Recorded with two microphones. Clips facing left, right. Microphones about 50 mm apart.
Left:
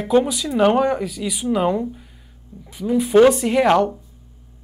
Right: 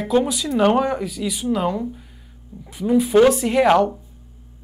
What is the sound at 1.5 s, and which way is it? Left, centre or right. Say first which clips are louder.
Speech: left 3 dB; centre.